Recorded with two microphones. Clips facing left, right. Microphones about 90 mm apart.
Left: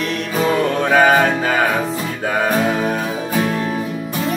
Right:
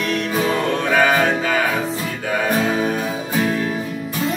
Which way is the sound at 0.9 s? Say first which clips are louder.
Left 4 dB; 30° left (ahead or behind).